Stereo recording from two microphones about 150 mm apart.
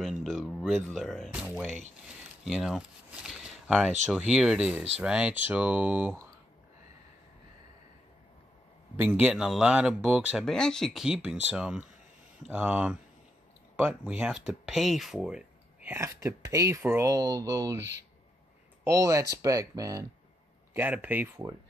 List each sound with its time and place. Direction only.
0.0 s speech: centre (ahead or behind)
8.9 s speech: 15° right (ahead or behind)
10.4 s speech: 5° left (ahead or behind); by 17.8 s 25° right (ahead or behind)
18.9 s speech: 20° right (ahead or behind)
20.7 s speech: 10° right (ahead or behind)